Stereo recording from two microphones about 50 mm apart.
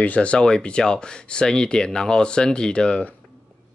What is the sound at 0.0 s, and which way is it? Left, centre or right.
Speech, left.